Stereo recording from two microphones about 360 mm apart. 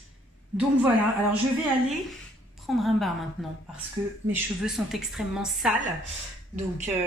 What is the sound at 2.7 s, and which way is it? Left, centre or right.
Speech, centre.